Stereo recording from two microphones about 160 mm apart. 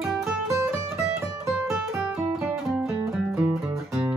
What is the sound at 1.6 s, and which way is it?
Music, centre (ahead or behind).